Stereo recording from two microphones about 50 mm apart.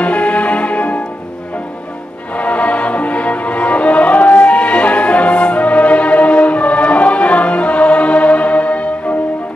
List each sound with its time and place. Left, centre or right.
0.0 s music: left
2.3 s music: left